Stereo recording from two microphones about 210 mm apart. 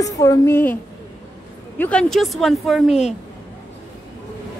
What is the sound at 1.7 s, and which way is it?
Speech, 5° left (ahead or behind).